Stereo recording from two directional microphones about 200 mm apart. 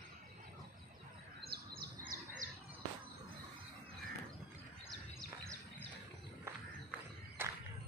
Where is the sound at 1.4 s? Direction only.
50° right (ahead or behind).